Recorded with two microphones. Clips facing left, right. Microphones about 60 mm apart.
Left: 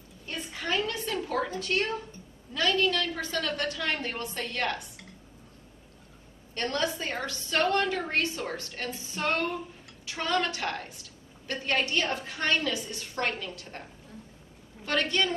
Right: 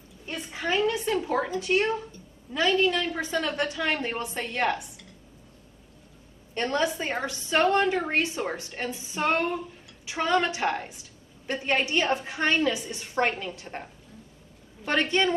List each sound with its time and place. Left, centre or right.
0.3 s a sound: centre
2.5 s a woman's voice: centre
6.5 s a woman's voice: centre
14.9 s a woman's voice: right